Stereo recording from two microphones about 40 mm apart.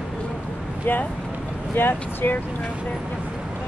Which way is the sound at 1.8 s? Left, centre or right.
Left.